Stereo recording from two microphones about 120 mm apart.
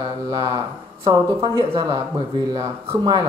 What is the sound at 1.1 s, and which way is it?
Speech, 35° right (ahead or behind).